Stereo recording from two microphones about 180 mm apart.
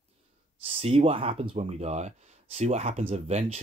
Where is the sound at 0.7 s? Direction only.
35° right (ahead or behind).